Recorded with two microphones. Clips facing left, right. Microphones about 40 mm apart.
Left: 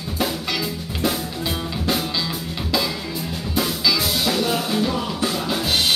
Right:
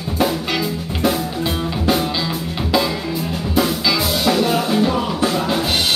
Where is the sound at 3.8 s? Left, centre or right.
Centre.